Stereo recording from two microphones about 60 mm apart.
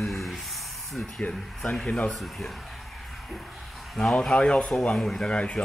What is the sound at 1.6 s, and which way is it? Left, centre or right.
Speech, centre.